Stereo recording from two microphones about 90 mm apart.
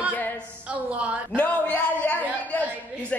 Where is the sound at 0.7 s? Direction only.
15° right (ahead or behind).